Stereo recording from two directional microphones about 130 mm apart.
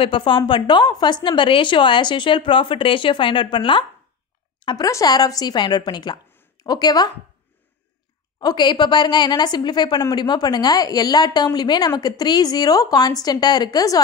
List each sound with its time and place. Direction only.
0.0 s a woman's voice: 40° left (ahead or behind)
4.6 s a sound: 40° left (ahead or behind)
4.8 s a woman's voice: 30° left (ahead or behind)
8.4 s a woman's voice: 35° left (ahead or behind)